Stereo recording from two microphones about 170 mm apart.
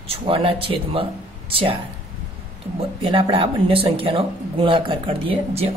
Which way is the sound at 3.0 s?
30° right (ahead or behind).